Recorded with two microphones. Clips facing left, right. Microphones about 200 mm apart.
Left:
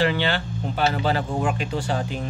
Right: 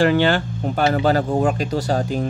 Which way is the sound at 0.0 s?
45° right (ahead or behind).